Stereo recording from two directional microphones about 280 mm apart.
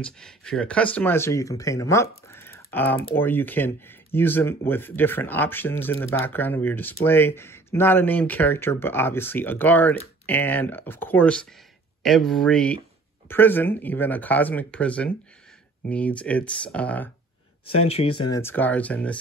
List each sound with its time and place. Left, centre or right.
0.0 s speech: centre
17.8 s speech: left
18.3 s speech: centre